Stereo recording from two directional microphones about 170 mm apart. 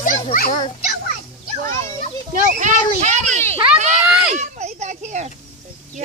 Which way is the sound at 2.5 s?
45° right (ahead or behind).